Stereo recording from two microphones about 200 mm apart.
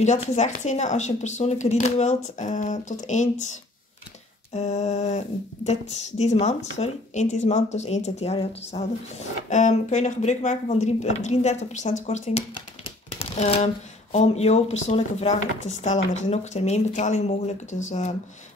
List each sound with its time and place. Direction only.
0.0 s speech: 35° left (ahead or behind)
4.6 s speech: 35° left (ahead or behind)
12.5 s a sound: 30° left (ahead or behind)
14.1 s speech: 35° left (ahead or behind)